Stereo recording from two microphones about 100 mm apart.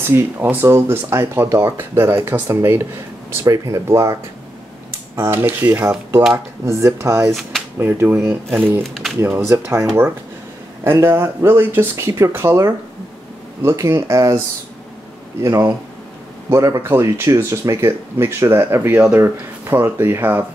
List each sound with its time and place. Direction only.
0.0 s speech: 25° right (ahead or behind)
3.4 s speech: 35° right (ahead or behind)
5.3 s speech: 25° right (ahead or behind)
8.8 s a sound: centre (ahead or behind)
9.2 s speech: 25° right (ahead or behind)
10.8 s speech: 25° right (ahead or behind)
15.4 s speech: 35° right (ahead or behind)